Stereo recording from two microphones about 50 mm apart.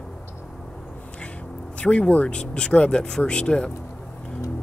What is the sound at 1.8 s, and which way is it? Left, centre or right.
Speech, left.